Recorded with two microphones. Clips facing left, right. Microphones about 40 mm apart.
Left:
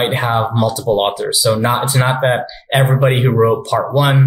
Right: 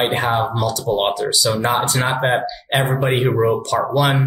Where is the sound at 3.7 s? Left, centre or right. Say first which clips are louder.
Left 3 dB; centre.